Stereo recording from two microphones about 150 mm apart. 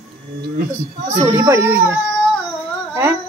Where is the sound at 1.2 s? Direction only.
20° right (ahead or behind).